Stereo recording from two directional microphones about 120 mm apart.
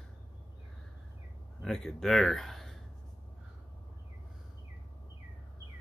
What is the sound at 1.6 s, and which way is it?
Speech, 5° left (ahead or behind).